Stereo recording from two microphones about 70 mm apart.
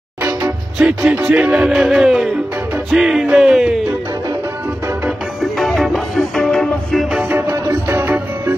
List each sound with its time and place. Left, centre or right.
0.7 s music: centre
3.0 s speech: centre
5.4 s music: centre
7.1 s music: centre
7.6 s music: right